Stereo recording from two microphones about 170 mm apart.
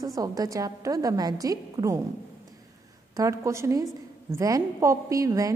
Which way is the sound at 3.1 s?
20° right (ahead or behind).